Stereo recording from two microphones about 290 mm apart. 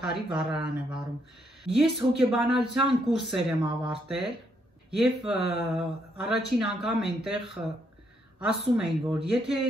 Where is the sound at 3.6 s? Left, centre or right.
Centre.